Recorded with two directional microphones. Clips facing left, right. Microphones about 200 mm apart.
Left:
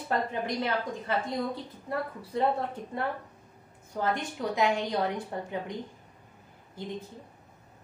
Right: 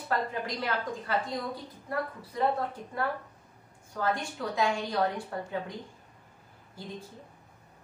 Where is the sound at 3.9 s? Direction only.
20° left (ahead or behind).